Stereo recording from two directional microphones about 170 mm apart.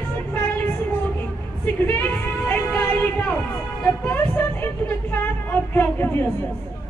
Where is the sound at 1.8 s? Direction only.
10° left (ahead or behind).